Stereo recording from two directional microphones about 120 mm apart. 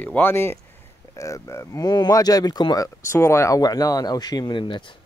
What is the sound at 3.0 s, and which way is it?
Speech, 25° left (ahead or behind).